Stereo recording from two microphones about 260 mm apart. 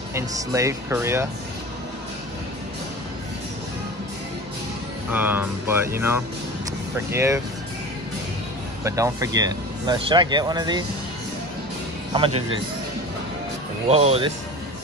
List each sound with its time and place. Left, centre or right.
0.1 s speech: centre
5.1 s speech: centre
8.8 s speech: centre
12.1 s speech: right
13.8 s speech: right